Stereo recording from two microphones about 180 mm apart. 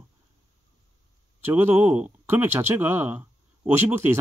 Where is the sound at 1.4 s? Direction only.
15° right (ahead or behind).